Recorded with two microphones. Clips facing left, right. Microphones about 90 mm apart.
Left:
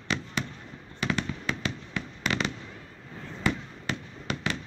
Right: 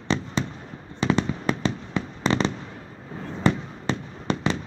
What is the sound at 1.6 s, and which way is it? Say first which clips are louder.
Fireworks: right 7 dB; 30° right (ahead or behind).